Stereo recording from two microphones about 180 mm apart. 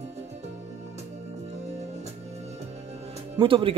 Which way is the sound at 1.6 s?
40° right (ahead or behind).